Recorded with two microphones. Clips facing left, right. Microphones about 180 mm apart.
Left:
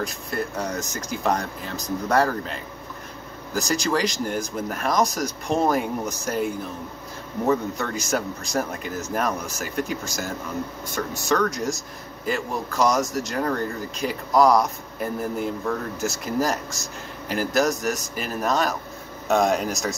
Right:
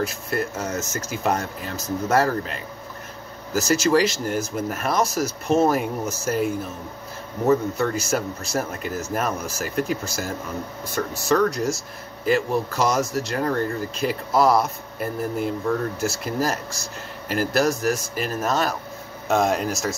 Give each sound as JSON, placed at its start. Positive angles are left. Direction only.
{"t": 0.0, "sound": "a man's voice", "side_deg": -5}